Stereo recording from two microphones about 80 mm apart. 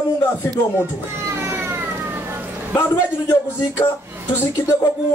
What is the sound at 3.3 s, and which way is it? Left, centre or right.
Speech, left.